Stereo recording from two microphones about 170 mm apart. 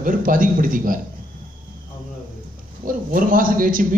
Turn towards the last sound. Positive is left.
turn(degrees=-55)  # may be behind; listen again after turning